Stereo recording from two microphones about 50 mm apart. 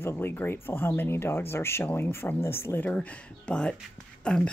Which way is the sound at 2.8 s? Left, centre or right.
Left.